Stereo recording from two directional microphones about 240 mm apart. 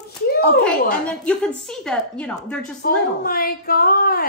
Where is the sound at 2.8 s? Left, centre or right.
Left.